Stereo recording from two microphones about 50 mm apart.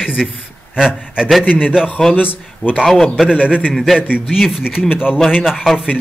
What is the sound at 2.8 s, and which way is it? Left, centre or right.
Speech, centre.